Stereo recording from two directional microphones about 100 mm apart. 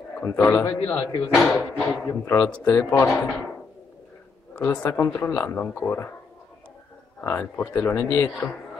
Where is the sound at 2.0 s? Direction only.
30° left (ahead or behind).